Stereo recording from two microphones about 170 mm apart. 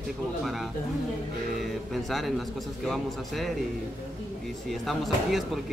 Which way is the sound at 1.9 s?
Centre (ahead or behind).